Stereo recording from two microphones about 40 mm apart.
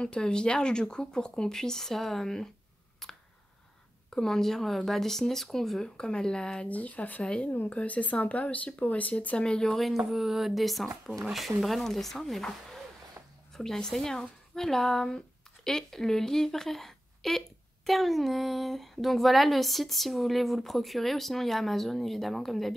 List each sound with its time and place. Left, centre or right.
0.0 s speech: left
4.1 s speech: centre
5.9 s speech: centre
6.7 s speech: left
9.4 s speech: centre
9.8 s speech: centre
13.6 s speech: centre